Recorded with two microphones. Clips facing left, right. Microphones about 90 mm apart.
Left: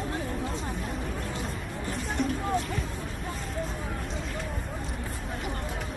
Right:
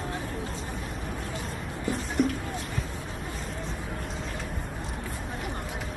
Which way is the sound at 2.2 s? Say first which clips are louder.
Right 4 dB; 5° right (ahead or behind).